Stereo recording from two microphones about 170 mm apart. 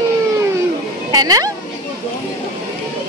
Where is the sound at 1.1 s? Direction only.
20° right (ahead or behind).